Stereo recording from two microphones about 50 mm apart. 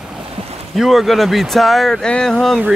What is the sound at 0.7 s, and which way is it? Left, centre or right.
Speech, centre.